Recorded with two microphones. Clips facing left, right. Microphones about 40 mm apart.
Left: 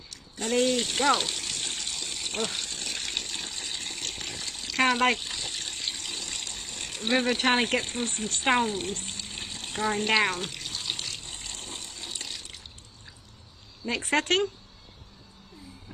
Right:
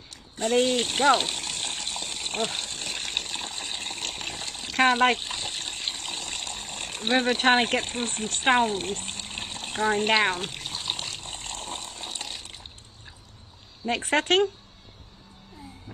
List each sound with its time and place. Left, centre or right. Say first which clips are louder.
0.1 s speech: right 4 dB; right
1.1 s water: right 3 dB; right
2.3 s water: right 2 dB; right
11.2 s water: right 4 dB; right
13.8 s speech: right 2 dB; right